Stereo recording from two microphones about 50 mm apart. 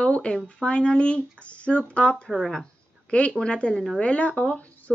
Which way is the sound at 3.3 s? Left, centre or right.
Left.